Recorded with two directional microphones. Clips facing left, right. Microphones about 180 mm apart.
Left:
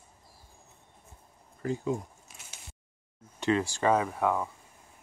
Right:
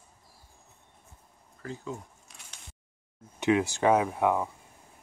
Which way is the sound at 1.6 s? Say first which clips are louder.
Left 7 dB; 15° left (ahead or behind).